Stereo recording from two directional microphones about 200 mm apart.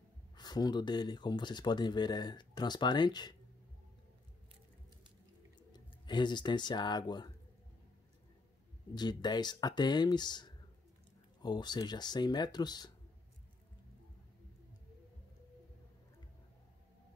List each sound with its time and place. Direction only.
0.4 s speech: 20° left (ahead or behind)
5.6 s speech: 20° left (ahead or behind)
8.9 s speech: 20° left (ahead or behind)